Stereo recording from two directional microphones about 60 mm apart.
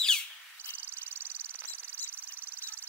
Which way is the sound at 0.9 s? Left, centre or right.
Right.